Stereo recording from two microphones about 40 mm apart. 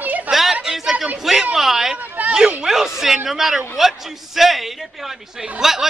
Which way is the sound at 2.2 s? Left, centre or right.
Right.